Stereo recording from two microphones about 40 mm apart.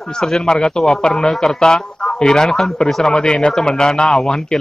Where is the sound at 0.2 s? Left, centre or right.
Centre.